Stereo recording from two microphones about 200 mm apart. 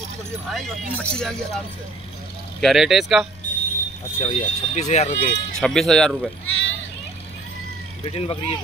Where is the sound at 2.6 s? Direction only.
Centre (ahead or behind).